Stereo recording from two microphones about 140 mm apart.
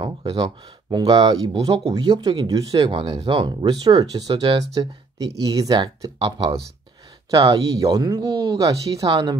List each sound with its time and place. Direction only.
0.0 s speech: 25° right (ahead or behind)
2.9 s speech: 35° right (ahead or behind)